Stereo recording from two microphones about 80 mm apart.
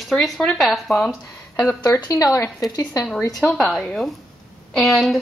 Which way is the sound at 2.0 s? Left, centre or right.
Left.